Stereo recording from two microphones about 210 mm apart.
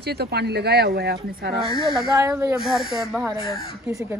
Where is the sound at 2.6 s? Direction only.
Centre (ahead or behind).